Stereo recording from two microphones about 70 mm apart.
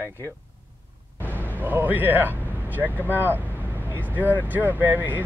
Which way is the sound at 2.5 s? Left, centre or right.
Right.